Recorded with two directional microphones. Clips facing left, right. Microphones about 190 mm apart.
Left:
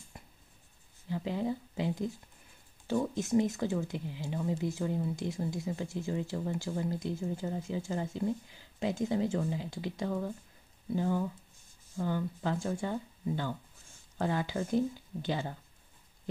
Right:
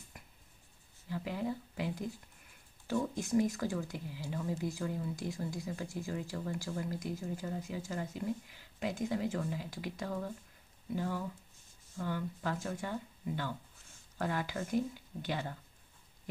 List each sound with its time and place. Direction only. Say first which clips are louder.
0.1 s writing: left 4 dB; 25° left (ahead or behind)
1.0 s speech: left 4 dB; 20° left (ahead or behind)